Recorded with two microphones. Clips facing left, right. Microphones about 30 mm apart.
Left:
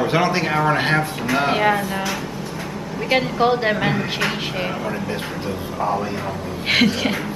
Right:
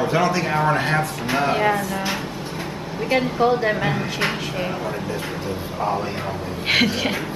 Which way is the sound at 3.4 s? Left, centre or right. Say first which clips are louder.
Even; left.